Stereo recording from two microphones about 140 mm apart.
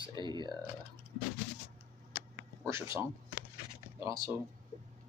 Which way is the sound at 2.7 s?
20° right (ahead or behind).